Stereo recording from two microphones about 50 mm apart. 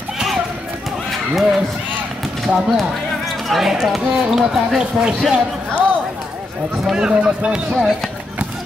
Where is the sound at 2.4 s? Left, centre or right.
Centre.